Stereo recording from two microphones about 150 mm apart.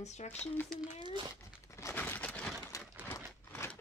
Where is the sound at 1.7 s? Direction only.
20° left (ahead or behind).